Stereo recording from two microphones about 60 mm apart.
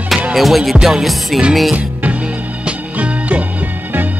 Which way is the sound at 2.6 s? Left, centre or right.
Right.